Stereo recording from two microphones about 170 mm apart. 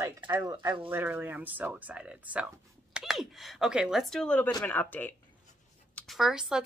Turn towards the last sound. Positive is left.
turn(degrees=-5)  # may be behind; listen again after turning